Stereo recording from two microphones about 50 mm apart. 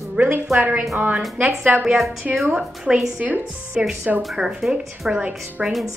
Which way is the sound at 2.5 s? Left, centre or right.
Centre.